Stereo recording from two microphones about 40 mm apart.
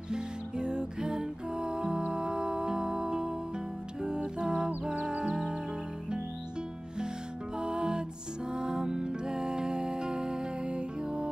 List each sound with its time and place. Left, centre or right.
0.1 s music: right
7.5 s music: right